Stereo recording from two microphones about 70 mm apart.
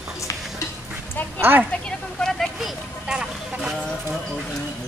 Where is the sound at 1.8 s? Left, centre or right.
Centre.